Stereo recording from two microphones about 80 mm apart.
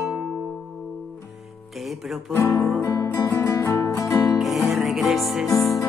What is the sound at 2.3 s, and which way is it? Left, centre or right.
Music, left.